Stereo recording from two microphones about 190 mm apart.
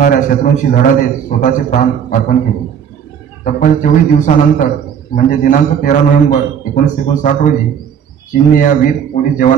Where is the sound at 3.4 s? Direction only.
45° left (ahead or behind).